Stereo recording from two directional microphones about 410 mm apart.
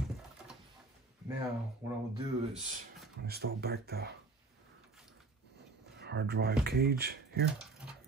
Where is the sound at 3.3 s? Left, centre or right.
Right.